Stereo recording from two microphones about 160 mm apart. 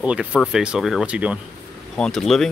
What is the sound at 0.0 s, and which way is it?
Speech, 5° right (ahead or behind).